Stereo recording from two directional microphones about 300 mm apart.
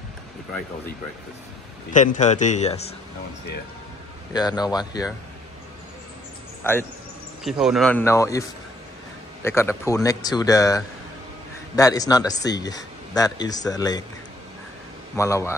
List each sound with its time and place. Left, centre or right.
1.9 s a man's voice: left
4.3 s speech: centre
6.6 s a man's voice: centre
15.1 s speech: centre